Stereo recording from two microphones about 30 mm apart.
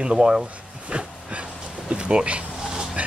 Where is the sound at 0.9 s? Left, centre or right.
Right.